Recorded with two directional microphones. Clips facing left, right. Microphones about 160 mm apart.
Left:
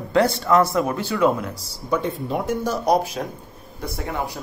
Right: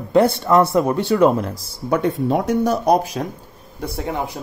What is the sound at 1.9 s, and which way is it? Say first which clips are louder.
Speech: right 5 dB; 60° right (ahead or behind).